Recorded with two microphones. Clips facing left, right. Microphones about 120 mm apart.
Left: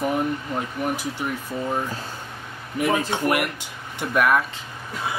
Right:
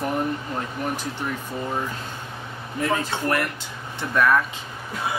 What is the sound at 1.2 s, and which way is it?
Speech, 10° left (ahead or behind).